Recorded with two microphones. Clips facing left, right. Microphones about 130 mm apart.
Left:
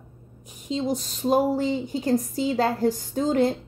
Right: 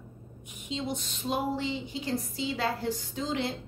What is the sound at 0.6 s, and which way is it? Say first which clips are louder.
A woman's voice: left 8 dB; 40° left (ahead or behind).